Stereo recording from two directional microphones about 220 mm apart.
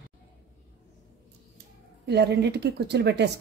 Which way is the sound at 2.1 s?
50° right (ahead or behind).